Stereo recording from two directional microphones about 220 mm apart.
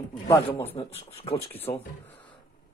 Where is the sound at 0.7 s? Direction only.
30° left (ahead or behind).